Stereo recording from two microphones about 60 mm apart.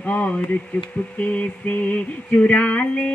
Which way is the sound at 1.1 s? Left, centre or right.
Left.